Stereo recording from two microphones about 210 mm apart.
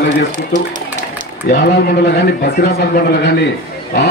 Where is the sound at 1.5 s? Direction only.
50° left (ahead or behind).